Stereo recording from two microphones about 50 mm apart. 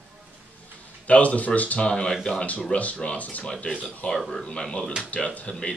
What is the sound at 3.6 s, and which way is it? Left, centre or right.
Speech, centre.